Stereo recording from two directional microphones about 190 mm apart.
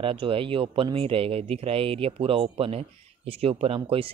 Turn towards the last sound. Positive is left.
turn(degrees=-30)  # may be behind; listen again after turning